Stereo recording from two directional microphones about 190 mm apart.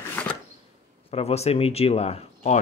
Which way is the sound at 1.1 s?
35° left (ahead or behind).